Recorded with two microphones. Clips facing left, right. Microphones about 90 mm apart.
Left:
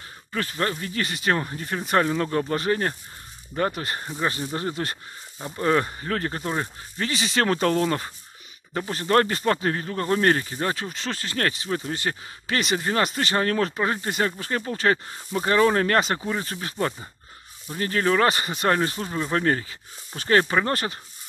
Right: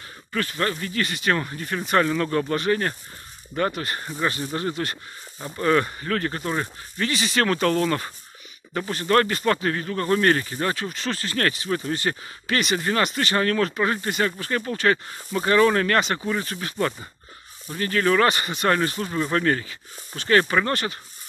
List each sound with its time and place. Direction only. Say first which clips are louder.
0.3 s speech: right 1 dB; 20° left (ahead or behind)
2.5 s speech: right 2 dB; 30° left (ahead or behind)
3.5 s speech: right 1 dB; 15° left (ahead or behind)
12.4 s speech: right 1 dB; 25° left (ahead or behind)
16.7 s speech: right 1 dB; 5° left (ahead or behind)
17.7 s speech: right 1 dB; 20° left (ahead or behind)